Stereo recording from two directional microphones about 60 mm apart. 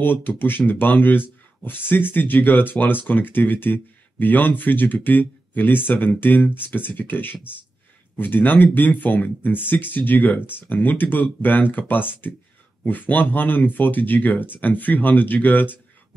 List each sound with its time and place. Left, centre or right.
0.0 s speech: left